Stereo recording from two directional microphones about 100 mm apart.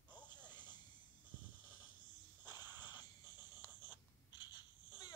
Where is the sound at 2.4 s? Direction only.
45° left (ahead or behind).